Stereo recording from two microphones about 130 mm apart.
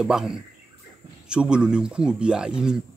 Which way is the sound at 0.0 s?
5° right (ahead or behind).